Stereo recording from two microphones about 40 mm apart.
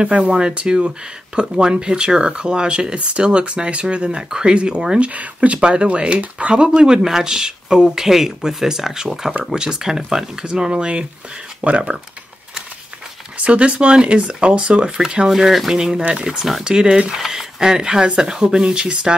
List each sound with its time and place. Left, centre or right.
0.0 s speech: right
5.1 s speech: right
5.6 s speech: right
13.4 s speech: right
15.0 s speech: centre
15.7 s speech: centre